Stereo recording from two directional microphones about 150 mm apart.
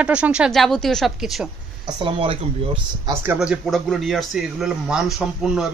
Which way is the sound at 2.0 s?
40° right (ahead or behind).